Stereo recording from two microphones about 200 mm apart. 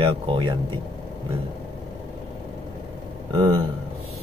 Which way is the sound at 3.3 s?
25° right (ahead or behind).